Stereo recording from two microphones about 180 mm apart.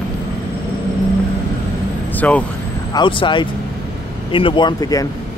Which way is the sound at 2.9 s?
25° left (ahead or behind).